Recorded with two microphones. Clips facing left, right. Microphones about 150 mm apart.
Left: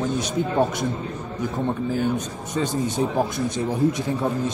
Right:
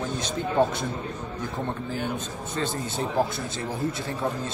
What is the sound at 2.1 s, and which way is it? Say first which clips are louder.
Speech: left 5 dB; 15° left (ahead or behind).